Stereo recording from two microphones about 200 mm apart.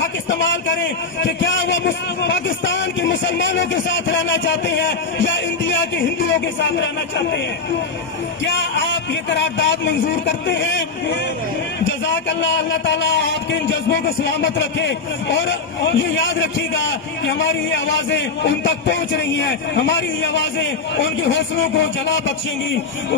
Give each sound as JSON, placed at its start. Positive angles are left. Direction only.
{"t": 0.3, "sound": "a man's voice", "side_deg": 65}
{"t": 8.5, "sound": "a man's voice", "side_deg": 65}